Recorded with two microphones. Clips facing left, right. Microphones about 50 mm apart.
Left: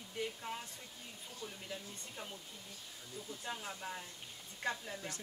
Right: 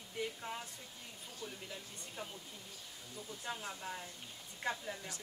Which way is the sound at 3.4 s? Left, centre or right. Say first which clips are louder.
Right 1 dB; centre.